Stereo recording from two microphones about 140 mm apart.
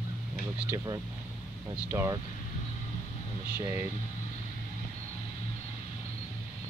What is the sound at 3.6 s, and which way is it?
Speech, 25° right (ahead or behind).